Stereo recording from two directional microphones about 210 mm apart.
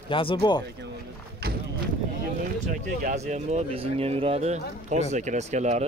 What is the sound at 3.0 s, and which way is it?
Speech, 35° right (ahead or behind).